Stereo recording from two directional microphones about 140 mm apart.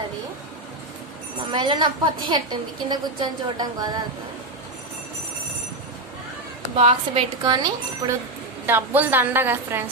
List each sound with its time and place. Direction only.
1.5 s a woman's voice: 30° right (ahead or behind)
6.8 s a woman's voice: 45° right (ahead or behind)
7.4 s speech: 30° right (ahead or behind)
8.6 s a woman's voice: 15° right (ahead or behind)